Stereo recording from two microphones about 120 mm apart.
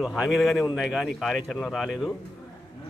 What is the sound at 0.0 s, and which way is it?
Speech, 5° right (ahead or behind).